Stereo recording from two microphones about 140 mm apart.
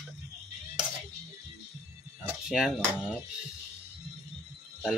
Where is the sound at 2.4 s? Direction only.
5° right (ahead or behind).